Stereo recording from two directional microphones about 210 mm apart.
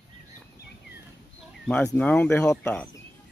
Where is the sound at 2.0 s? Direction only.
5° left (ahead or behind).